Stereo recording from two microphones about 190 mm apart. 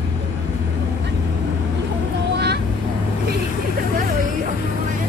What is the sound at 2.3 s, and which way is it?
Vehicle, 60° right (ahead or behind).